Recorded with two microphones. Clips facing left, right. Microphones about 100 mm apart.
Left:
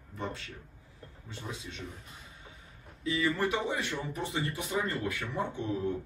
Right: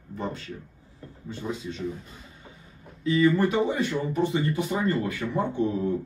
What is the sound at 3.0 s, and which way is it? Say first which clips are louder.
Speech: right 9 dB; 35° right (ahead or behind).